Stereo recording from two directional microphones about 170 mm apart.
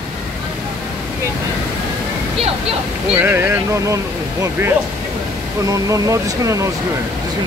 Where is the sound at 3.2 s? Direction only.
10° right (ahead or behind).